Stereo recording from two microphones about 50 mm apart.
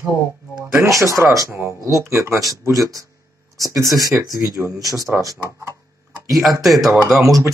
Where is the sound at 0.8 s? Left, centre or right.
Right.